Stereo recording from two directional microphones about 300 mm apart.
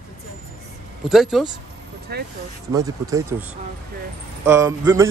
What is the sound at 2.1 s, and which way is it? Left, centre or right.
Speech, right.